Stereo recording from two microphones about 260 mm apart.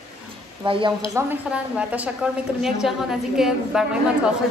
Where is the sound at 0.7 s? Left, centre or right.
Centre.